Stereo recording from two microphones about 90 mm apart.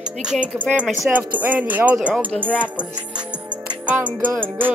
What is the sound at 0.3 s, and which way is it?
Speech, 15° right (ahead or behind).